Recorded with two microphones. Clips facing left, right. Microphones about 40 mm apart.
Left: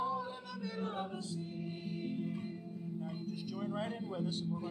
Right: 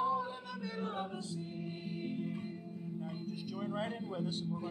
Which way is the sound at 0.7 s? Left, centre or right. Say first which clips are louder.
Even; right.